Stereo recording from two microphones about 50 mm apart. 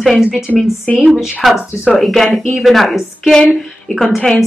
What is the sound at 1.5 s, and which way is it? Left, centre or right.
Speech, centre.